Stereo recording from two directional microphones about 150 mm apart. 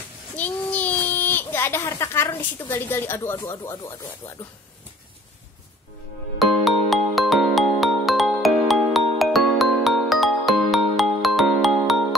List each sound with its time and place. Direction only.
0.4 s a sound: 10° left (ahead or behind)
2.7 s speech: 15° left (ahead or behind)
3.3 s speech: 25° left (ahead or behind)
6.3 s music: centre (ahead or behind)